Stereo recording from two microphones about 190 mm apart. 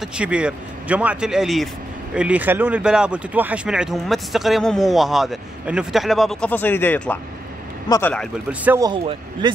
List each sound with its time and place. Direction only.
0.0 s speech: 5° right (ahead or behind)
8.5 s speech: 10° right (ahead or behind)
8.8 s a man's voice: 25° right (ahead or behind)